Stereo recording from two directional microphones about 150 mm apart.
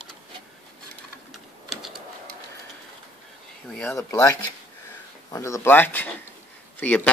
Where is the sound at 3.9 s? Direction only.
20° left (ahead or behind).